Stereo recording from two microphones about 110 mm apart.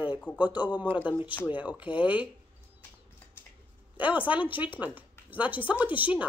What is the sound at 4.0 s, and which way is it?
Speech, 15° right (ahead or behind).